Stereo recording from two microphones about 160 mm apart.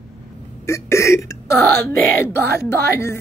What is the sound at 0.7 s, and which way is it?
Speech, 20° left (ahead or behind).